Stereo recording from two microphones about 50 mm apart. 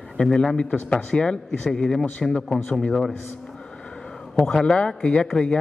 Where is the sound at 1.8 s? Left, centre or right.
Centre.